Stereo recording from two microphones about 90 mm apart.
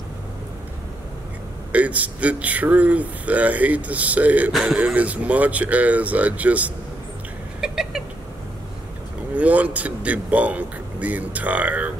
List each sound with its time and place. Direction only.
1.7 s a man's voice: 15° right (ahead or behind)
4.5 s speech: 5° right (ahead or behind)
4.9 s a man's voice: 15° right (ahead or behind)
7.6 s cat: 5° right (ahead or behind)
9.3 s a man's voice: 15° right (ahead or behind)